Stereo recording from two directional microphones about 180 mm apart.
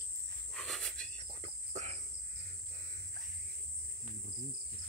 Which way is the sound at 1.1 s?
35° right (ahead or behind).